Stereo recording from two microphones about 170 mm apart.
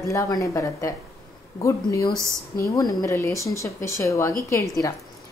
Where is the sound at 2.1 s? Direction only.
15° right (ahead or behind).